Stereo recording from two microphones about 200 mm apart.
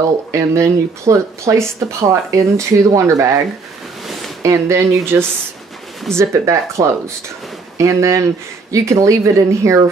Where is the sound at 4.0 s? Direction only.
Centre (ahead or behind).